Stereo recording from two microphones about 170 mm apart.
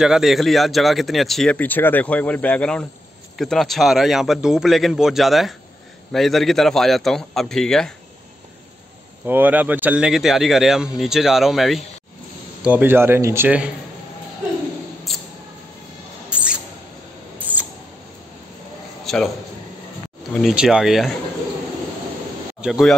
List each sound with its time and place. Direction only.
0.0 s speech: 5° right (ahead or behind)
9.2 s speech: 10° right (ahead or behind)
15.1 s a sound: centre (ahead or behind)
16.3 s mouse: 5° right (ahead or behind)
19.1 s a man's voice: centre (ahead or behind)
20.3 s speech: centre (ahead or behind)
22.6 s speech: centre (ahead or behind)